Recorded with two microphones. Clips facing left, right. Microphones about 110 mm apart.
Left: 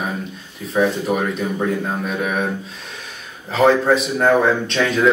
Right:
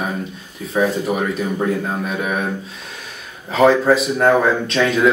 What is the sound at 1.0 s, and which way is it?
A man's voice, 5° right (ahead or behind).